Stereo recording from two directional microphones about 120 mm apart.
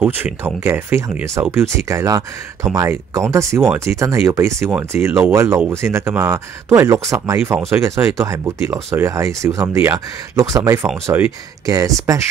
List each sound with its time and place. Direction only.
0.0 s speech: 15° right (ahead or behind)